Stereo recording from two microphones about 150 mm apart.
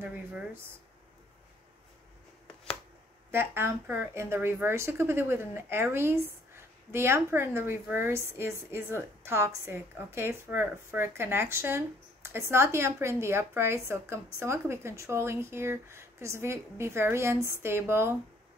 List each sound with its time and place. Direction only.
0.0 s speech: 10° right (ahead or behind)
3.3 s speech: 15° right (ahead or behind)